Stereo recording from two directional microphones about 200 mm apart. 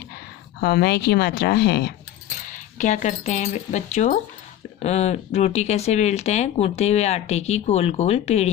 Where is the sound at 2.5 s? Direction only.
40° left (ahead or behind).